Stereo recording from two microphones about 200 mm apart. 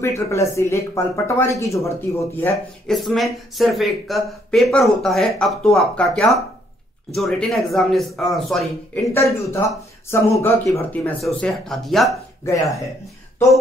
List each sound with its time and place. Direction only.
0.0 s speech: 15° left (ahead or behind)
3.0 s speech: centre (ahead or behind)
9.1 s speech: 15° left (ahead or behind)
12.4 s speech: 15° left (ahead or behind)